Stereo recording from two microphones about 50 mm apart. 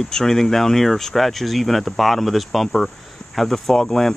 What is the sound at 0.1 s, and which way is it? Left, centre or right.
Speech, centre.